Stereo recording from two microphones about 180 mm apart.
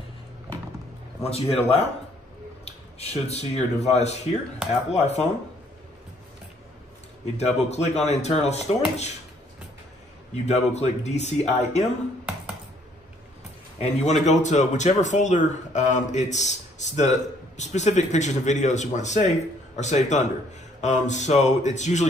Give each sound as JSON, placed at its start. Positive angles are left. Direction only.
{"t": 1.2, "sound": "speech", "side_deg": 35}
{"t": 7.3, "sound": "speech", "side_deg": 35}
{"t": 10.3, "sound": "speech", "side_deg": 40}
{"t": 13.7, "sound": "speech", "side_deg": 40}